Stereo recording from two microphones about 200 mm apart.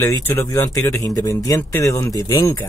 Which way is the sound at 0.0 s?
15° left (ahead or behind).